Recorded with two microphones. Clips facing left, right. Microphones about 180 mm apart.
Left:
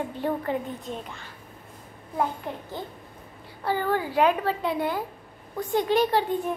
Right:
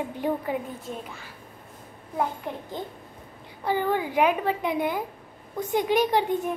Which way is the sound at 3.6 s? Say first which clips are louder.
Right 1 dB; 15° right (ahead or behind).